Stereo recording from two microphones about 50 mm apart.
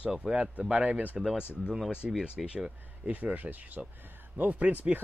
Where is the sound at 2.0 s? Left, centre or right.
Centre.